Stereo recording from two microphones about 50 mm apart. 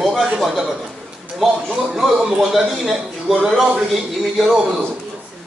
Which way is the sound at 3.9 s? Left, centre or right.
Centre.